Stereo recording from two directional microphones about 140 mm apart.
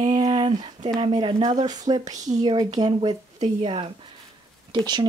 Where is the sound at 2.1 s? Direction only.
60° right (ahead or behind).